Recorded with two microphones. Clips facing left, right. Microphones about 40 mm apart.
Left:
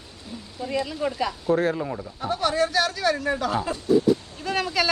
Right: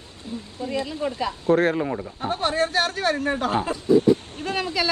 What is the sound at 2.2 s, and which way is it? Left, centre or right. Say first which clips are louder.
Speech: left 1 dB; right.